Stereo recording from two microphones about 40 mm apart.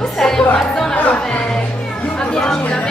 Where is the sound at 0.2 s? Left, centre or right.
Centre.